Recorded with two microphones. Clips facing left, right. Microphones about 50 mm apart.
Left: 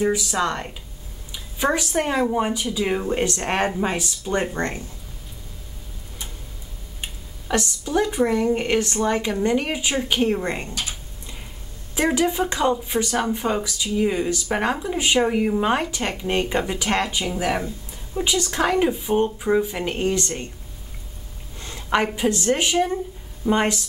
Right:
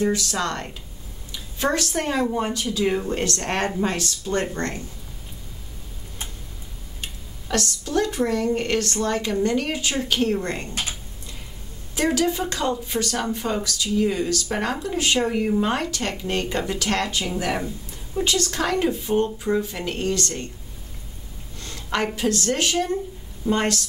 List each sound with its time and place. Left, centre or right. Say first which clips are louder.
0.0 s speech: left 2 dB; centre
7.0 s speech: left 1 dB; centre
10.7 s speech: right 1 dB; right
11.9 s a woman's voice: left 1 dB; centre
21.5 s a woman's voice: left 4 dB; centre